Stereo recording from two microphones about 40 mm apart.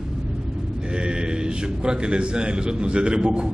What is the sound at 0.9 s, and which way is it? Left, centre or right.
A man's voice, right.